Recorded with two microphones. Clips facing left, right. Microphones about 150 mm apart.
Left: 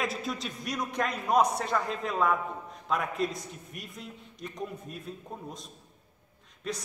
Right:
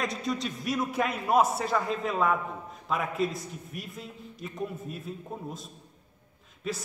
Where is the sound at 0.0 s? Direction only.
Centre (ahead or behind).